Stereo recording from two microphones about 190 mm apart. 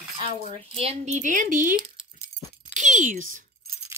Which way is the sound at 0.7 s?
30° right (ahead or behind).